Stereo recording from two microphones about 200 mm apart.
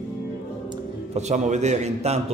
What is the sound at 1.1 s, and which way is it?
A man's voice, 35° right (ahead or behind).